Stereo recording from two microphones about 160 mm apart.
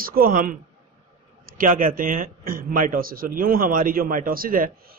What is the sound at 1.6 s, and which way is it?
A man's voice, 60° right (ahead or behind).